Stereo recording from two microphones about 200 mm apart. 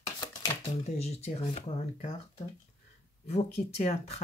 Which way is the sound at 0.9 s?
30° left (ahead or behind).